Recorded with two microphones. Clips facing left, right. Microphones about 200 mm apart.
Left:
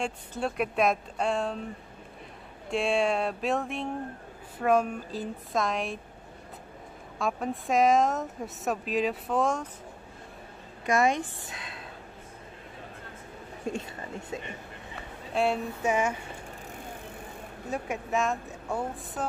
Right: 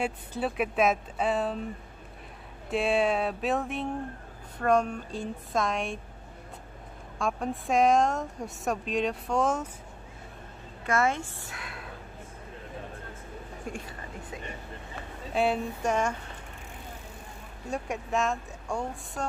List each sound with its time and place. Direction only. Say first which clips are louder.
0.0 s speech: right 1 dB; 5° right (ahead or behind)
2.7 s speech: right 1 dB; centre (ahead or behind)
7.2 s speech: even; centre (ahead or behind)
10.9 s speech: left 2 dB; 15° left (ahead or behind)
13.7 s a woman's voice: left 6 dB; 25° left (ahead or behind)
15.3 s speech: even; centre (ahead or behind)
17.6 s speech: even; centre (ahead or behind)